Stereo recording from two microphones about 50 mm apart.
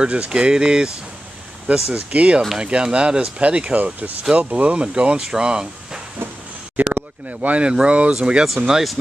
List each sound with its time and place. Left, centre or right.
0.0 s speech: right
6.8 s speech: right
8.6 s speech: centre